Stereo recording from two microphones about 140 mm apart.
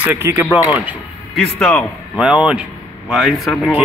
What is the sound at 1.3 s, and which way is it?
Speech, 10° left (ahead or behind).